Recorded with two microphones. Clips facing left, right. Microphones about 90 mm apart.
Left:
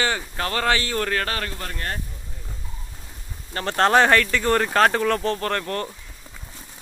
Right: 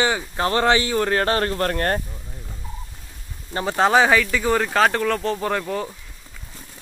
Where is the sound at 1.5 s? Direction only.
50° right (ahead or behind).